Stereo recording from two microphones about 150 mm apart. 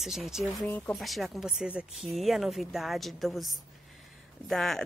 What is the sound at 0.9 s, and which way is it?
Speech, centre (ahead or behind).